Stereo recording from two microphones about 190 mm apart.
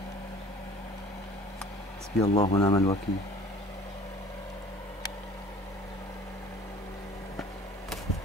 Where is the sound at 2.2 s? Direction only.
35° left (ahead or behind).